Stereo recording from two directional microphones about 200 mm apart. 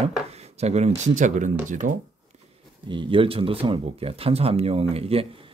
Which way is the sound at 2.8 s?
25° right (ahead or behind).